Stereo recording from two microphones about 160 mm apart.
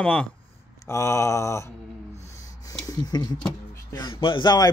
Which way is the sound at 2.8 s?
25° left (ahead or behind).